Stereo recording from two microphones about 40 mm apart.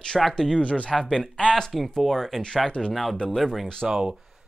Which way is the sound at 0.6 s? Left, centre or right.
Left.